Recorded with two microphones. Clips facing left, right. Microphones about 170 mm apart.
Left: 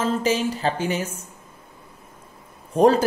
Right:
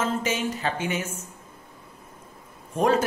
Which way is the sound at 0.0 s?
35° left (ahead or behind).